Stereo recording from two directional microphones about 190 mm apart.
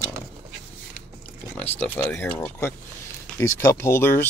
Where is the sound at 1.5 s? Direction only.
10° left (ahead or behind).